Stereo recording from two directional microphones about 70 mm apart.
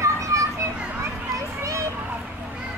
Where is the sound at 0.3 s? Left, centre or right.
Right.